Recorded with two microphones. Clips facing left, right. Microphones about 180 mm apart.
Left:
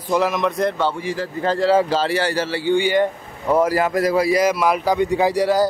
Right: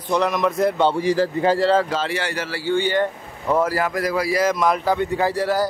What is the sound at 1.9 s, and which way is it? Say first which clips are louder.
A man's voice: left 5 dB; 35° left (ahead or behind).